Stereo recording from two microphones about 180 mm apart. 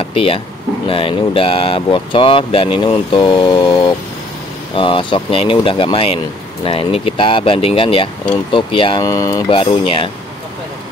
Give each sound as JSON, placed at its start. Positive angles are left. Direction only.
{"t": 0.0, "sound": "a sound", "side_deg": 30}
{"t": 0.8, "sound": "speech", "side_deg": 30}
{"t": 9.6, "sound": "speech", "side_deg": 30}